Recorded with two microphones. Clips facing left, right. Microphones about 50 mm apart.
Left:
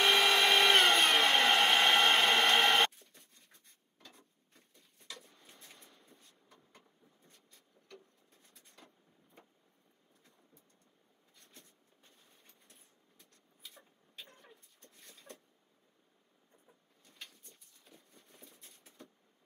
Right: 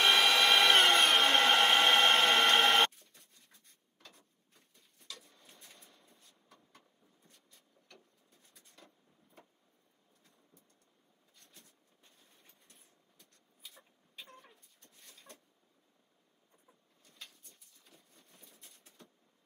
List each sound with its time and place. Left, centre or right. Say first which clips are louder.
0.0 s a sound: right 1 dB; centre
1.4 s hair dryer: right 1 dB; centre
2.2 s printer: right 1 dB; centre
5.2 s a sound: left 1 dB; centre
15.0 s vehicle: left 3 dB; centre
17.8 s patter: left 3 dB; centre